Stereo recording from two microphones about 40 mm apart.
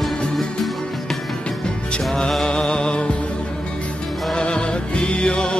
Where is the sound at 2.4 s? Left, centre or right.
Centre.